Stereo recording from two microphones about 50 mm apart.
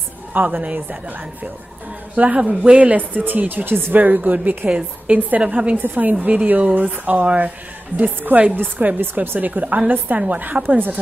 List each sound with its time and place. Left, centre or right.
0.3 s speech: right
4.6 s a woman's voice: centre
5.8 s speech: right
8.0 s speech: right
9.2 s a woman's voice: right
9.5 s speech: right